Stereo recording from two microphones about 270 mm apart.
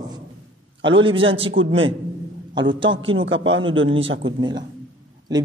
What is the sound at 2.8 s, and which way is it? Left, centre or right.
A man's voice, right.